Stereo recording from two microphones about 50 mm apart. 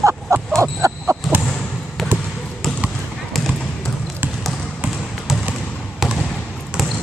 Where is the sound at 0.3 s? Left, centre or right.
Right.